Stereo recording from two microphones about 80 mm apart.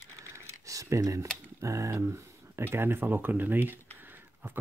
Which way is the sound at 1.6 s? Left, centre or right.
Right.